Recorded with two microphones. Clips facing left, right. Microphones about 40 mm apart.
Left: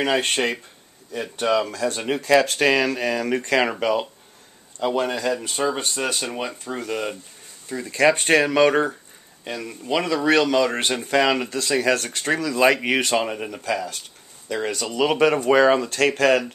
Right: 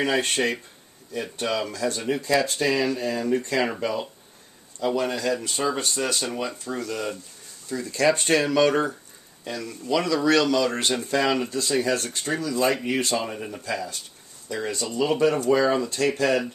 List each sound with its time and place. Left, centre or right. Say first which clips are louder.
0.0 s speech: left 2 dB; left
1.4 s speech: left 5 dB; left
4.7 s speech: left 2 dB; left